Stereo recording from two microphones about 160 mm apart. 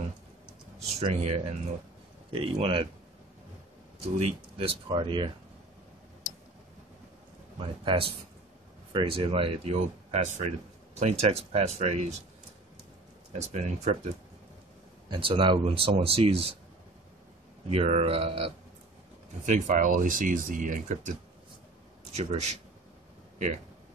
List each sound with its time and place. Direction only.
0.7 s speech: 40° right (ahead or behind)
4.6 s speech: 35° right (ahead or behind)
7.5 s speech: 30° right (ahead or behind)
13.3 s speech: 45° right (ahead or behind)
15.0 s speech: 30° right (ahead or behind)
17.6 s speech: 40° right (ahead or behind)
19.4 s speech: 50° right (ahead or behind)
22.1 s speech: 40° right (ahead or behind)